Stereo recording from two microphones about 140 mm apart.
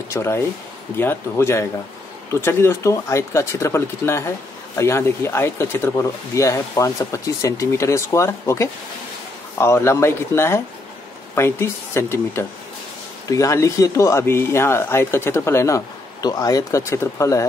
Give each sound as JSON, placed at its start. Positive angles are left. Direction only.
{"t": 0.1, "sound": "speech", "side_deg": 20}